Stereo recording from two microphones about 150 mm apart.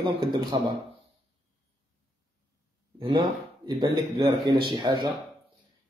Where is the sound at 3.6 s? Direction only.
30° right (ahead or behind).